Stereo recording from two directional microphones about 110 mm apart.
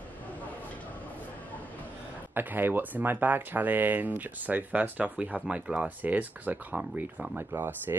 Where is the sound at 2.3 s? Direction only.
20° right (ahead or behind).